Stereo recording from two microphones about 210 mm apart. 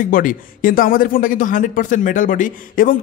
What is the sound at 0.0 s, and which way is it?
A man's voice, 40° left (ahead or behind).